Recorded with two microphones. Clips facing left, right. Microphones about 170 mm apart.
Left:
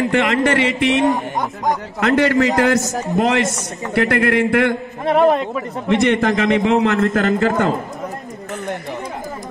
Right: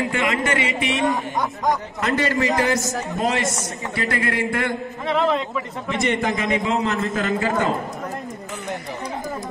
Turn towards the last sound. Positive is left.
turn(degrees=55)  # may be behind; listen again after turning